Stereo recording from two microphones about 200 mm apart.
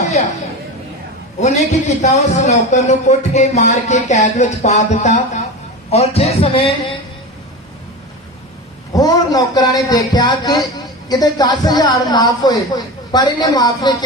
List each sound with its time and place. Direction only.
0.0 s a sound: 35° left (ahead or behind)
1.7 s speech: 35° left (ahead or behind)
8.9 s speech: 15° left (ahead or behind)